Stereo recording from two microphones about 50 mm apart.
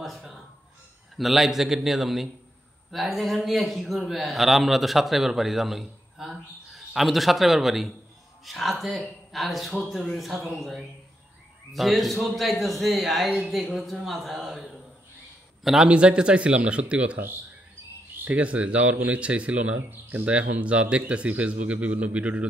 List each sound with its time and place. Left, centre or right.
1.1 s a man's voice: centre
15.9 s speech: centre
18.2 s speech: right
19.9 s speech: right
20.2 s speech: right